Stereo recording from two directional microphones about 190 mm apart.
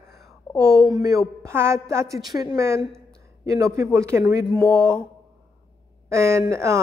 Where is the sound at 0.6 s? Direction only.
5° left (ahead or behind).